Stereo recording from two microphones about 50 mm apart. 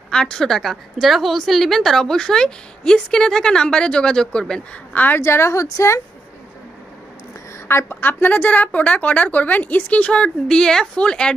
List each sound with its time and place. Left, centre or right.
0.1 s a woman's voice: centre
4.9 s a woman's voice: left
5.2 s a woman's voice: left
7.6 s a woman's voice: left; by 11.3 s centre